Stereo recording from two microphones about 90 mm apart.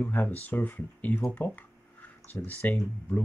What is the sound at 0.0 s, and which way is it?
Speech, 20° left (ahead or behind).